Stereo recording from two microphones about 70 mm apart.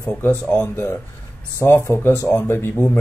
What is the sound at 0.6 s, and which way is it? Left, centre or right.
Speech, left.